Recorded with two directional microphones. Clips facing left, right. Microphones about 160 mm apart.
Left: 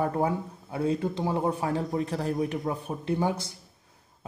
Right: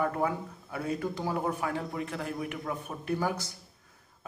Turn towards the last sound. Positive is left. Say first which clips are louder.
# left 3 dB
turn(degrees=25)  # may be behind; listen again after turning